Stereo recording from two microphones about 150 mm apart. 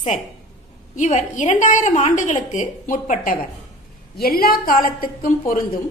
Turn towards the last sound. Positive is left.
turn(degrees=65)  # may be behind; listen again after turning